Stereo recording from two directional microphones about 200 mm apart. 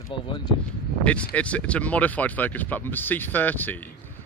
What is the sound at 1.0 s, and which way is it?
Speech, 5° left (ahead or behind).